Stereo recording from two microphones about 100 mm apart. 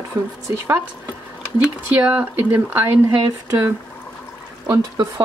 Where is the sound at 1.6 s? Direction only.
15° right (ahead or behind).